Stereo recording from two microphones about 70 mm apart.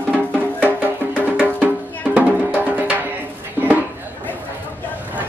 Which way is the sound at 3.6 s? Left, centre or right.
Right.